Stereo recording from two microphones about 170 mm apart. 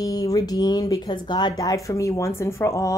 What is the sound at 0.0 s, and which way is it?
Speech, 20° left (ahead or behind).